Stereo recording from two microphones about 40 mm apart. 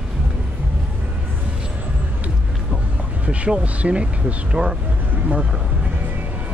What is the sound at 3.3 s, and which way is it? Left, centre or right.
Speech, right.